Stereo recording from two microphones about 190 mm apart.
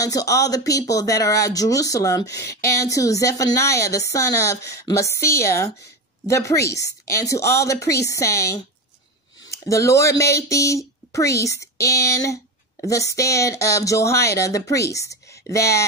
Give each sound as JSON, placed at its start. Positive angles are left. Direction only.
{"t": 0.0, "sound": "speech", "side_deg": 20}